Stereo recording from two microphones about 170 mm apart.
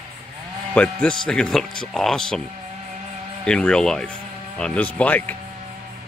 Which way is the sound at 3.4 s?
5° left (ahead or behind).